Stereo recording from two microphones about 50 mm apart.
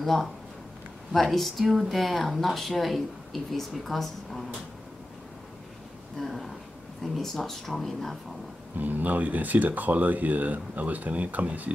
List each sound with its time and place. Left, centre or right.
0.0 s speech: centre
6.1 s speech: centre
8.7 s speech: right